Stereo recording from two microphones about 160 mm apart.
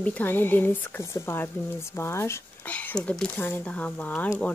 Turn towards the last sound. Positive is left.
turn(degrees=10)  # may be behind; listen again after turning